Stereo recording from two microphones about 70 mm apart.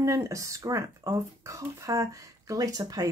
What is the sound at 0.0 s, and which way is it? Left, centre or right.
Speech, right.